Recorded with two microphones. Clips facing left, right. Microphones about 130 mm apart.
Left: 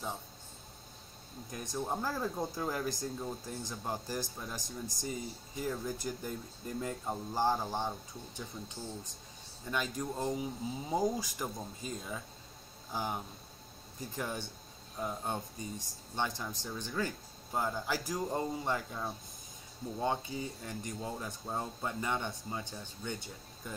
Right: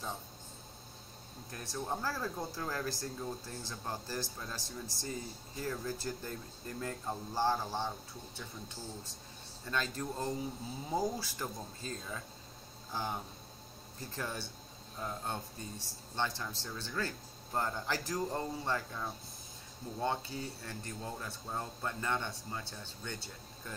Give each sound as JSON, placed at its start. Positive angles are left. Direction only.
{"t": 1.5, "sound": "speech", "side_deg": 15}
{"t": 9.7, "sound": "speech", "side_deg": 15}